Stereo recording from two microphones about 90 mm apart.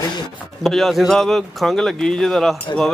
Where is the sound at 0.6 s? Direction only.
Centre (ahead or behind).